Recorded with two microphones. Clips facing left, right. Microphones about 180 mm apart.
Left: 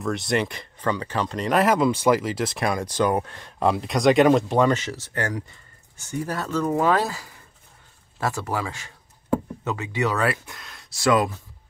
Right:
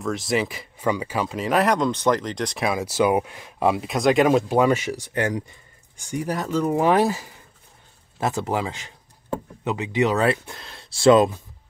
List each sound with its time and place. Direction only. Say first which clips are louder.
0.0 s speech: even; centre (ahead or behind); by 11.3 s 25° right (ahead or behind)